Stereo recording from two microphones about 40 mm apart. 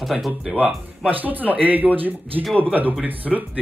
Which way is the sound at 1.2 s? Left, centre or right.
Right.